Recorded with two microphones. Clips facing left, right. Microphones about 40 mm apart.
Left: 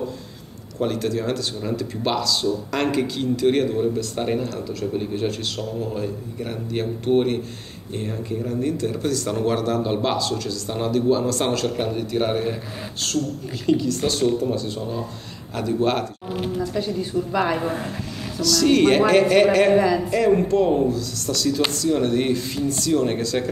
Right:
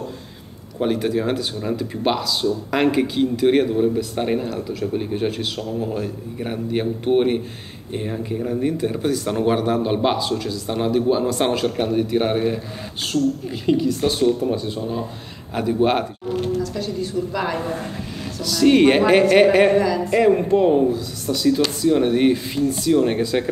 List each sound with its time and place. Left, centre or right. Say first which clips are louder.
0.7 s speech: right 3 dB; centre
16.3 s speech: right 4 dB; centre
18.4 s speech: right 2 dB; centre
19.7 s speech: left 1 dB; centre
20.1 s speech: right 2 dB; centre